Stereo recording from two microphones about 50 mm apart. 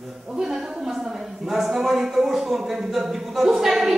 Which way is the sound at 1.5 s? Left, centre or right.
Centre.